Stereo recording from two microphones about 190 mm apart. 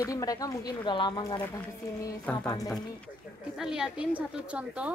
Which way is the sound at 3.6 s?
5° right (ahead or behind).